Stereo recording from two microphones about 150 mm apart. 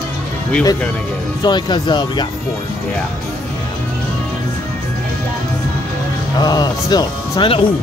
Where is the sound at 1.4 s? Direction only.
30° left (ahead or behind).